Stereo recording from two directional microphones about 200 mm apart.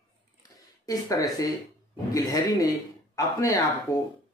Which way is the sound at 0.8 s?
15° left (ahead or behind).